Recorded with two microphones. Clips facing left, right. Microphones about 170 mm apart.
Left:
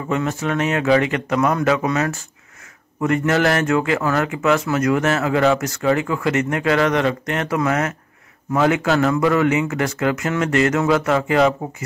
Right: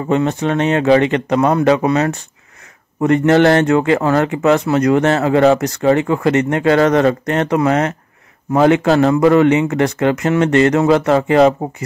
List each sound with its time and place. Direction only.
0.1 s speech: 30° right (ahead or behind)